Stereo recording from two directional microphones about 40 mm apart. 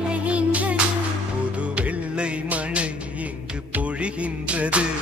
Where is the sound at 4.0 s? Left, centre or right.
Right.